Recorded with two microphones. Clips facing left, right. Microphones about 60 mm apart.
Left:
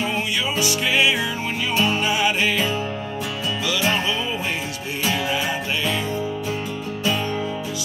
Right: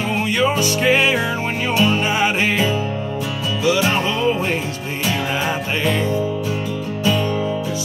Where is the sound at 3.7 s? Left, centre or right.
Right.